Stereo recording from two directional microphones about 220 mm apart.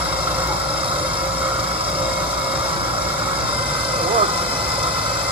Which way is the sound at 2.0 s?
5° right (ahead or behind).